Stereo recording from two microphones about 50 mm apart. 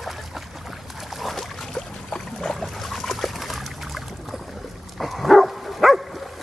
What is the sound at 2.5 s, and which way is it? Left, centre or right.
Trickle, centre.